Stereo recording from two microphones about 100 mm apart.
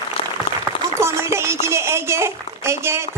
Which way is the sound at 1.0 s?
25° right (ahead or behind).